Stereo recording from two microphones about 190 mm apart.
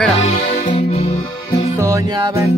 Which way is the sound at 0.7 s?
35° left (ahead or behind).